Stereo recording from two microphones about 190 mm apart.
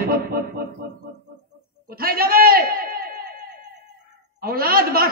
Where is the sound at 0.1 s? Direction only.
55° right (ahead or behind).